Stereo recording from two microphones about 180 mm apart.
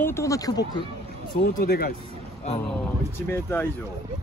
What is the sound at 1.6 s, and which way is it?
Speech, 55° left (ahead or behind).